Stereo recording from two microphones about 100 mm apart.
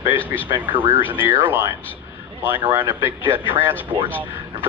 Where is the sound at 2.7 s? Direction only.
30° right (ahead or behind).